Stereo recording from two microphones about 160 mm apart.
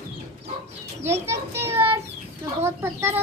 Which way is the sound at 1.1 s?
15° right (ahead or behind).